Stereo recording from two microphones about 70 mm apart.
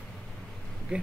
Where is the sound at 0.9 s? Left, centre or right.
Centre.